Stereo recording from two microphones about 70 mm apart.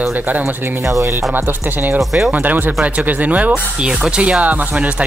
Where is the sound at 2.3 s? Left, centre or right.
Right.